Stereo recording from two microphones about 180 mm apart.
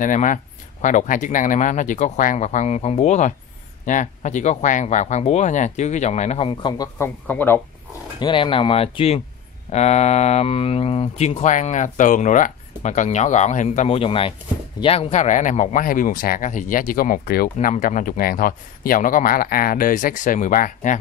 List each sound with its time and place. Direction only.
0.0 s speech: 45° left (ahead or behind); by 7.6 s 10° left (ahead or behind)
8.2 s speech: 30° left (ahead or behind); by 21.0 s 45° left (ahead or behind)